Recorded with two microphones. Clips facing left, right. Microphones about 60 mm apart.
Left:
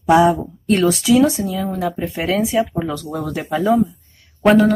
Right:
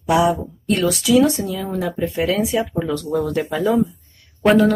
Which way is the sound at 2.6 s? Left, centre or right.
Centre.